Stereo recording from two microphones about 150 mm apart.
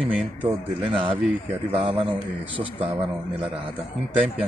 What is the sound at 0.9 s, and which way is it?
Speech, 35° right (ahead or behind).